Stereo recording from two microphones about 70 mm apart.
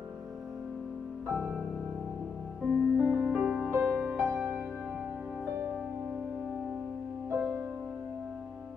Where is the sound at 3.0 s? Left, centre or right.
Right.